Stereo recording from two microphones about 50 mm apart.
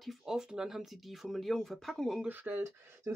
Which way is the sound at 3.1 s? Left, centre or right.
Right.